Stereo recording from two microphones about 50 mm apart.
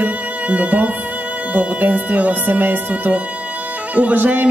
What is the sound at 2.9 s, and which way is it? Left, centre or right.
Music, right.